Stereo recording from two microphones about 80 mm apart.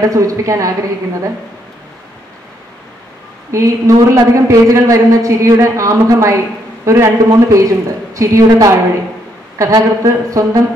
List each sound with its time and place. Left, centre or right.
0.1 s a woman's voice: right
3.5 s a man's voice: right